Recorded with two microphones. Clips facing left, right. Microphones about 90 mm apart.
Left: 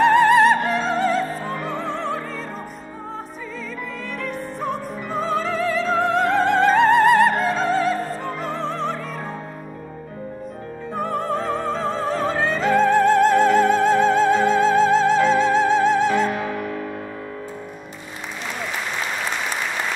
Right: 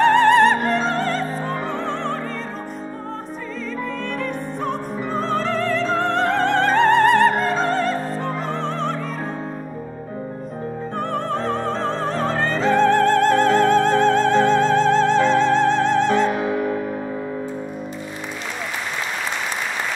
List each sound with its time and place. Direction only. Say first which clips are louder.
0.0 s opera: even; 5° left (ahead or behind)
4.2 s music: right 2 dB; centre (ahead or behind)
11.0 s opera: left 1 dB; 5° left (ahead or behind)
16.3 s music: right 3 dB; 20° right (ahead or behind)